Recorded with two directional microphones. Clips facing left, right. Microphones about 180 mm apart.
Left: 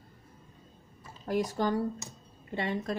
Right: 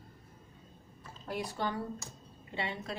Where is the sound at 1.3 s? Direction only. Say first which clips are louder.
Left 7 dB; 45° left (ahead or behind).